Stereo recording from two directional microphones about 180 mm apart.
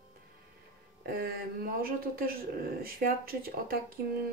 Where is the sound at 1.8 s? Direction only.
55° right (ahead or behind).